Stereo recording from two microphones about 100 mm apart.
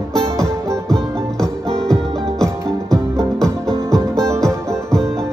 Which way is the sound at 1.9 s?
5° left (ahead or behind).